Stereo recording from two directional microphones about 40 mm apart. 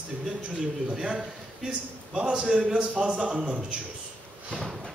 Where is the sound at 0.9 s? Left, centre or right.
Right.